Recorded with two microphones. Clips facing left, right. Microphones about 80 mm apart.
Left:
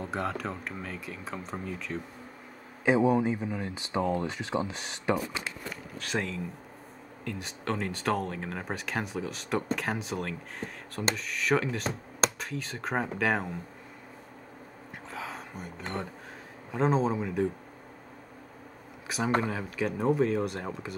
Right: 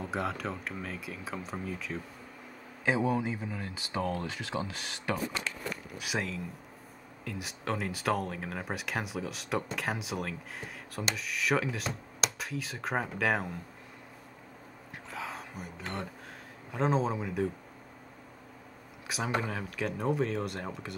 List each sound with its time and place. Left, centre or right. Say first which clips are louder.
0.0 s speech: left 1 dB; centre
2.8 s speech: left 5 dB; centre
5.1 s speech: left 3 dB; centre
5.9 s speech: left 4 dB; centre
15.0 s a sound: left 1 dB; centre
16.7 s speech: left 3 dB; centre
19.0 s speech: left 4 dB; centre